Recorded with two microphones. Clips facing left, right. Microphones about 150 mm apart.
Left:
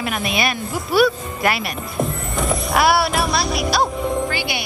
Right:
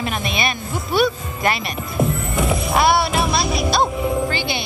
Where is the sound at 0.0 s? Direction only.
5° left (ahead or behind).